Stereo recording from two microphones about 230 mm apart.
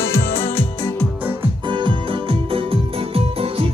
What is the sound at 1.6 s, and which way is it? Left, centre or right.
Music, right.